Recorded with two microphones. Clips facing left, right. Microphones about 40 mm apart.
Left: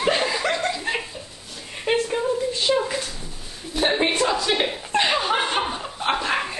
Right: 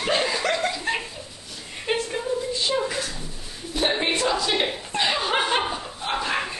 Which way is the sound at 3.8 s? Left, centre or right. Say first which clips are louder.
Left 2 dB; centre.